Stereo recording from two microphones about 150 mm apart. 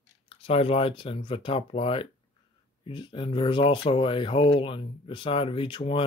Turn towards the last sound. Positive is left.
turn(degrees=35)  # may be behind; listen again after turning